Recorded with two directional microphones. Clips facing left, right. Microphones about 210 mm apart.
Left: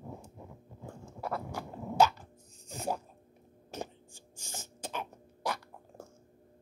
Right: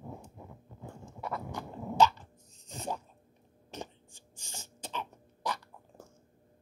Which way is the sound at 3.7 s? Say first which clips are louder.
Left 2 dB; 10° left (ahead or behind).